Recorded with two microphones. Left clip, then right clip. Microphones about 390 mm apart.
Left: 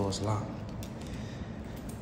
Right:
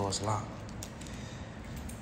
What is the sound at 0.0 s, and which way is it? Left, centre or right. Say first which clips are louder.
Speech: even; centre.